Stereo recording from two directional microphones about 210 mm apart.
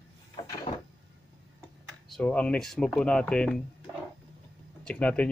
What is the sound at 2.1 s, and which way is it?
Speech, 5° left (ahead or behind).